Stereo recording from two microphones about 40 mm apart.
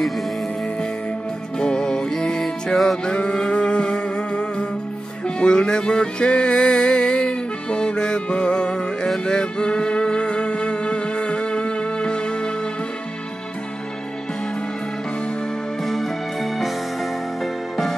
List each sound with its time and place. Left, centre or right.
1.6 s music: centre
3.1 s music: left
15.8 s music: centre